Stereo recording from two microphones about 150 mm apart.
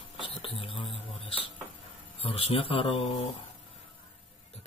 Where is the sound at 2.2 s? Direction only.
40° left (ahead or behind).